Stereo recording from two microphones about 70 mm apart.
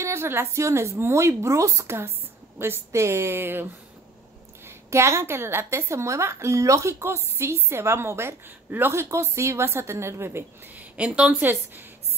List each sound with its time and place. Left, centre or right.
0.0 s a woman's voice: right
4.6 s a woman's voice: right
10.8 s speech: centre